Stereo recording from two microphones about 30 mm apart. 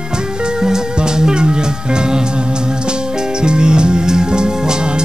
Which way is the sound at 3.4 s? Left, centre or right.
Right.